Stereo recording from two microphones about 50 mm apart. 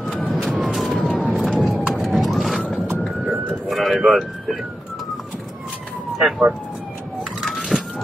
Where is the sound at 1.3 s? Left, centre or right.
Centre.